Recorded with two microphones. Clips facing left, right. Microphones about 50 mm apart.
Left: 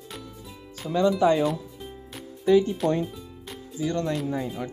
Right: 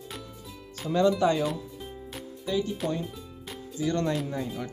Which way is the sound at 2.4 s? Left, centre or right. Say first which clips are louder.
Left 9 dB; left.